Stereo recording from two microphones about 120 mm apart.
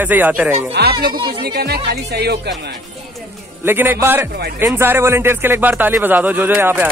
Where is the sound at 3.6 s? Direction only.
15° right (ahead or behind).